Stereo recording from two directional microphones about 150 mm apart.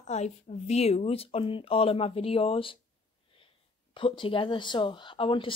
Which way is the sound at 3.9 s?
35° left (ahead or behind).